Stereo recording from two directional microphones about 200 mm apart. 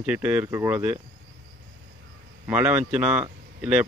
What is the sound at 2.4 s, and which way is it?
Speech, 5° right (ahead or behind).